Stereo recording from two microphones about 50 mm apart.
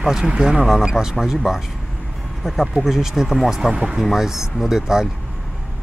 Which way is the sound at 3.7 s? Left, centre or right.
Centre.